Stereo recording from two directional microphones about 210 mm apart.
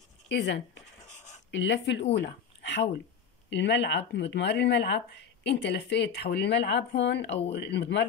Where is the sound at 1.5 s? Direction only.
60° left (ahead or behind).